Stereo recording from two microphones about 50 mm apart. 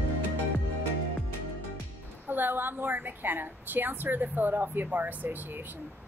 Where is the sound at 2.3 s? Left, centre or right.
Right.